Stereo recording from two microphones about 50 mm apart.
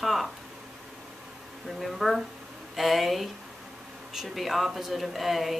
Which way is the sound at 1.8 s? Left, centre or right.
Centre.